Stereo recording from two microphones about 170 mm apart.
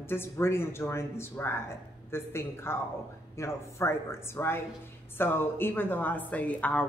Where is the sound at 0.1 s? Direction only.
15° left (ahead or behind).